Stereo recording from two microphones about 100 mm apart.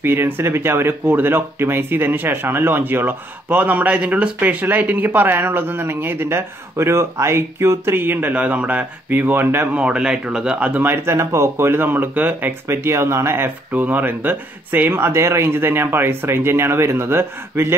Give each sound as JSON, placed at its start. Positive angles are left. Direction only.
{"t": 0.0, "sound": "speech", "side_deg": -25}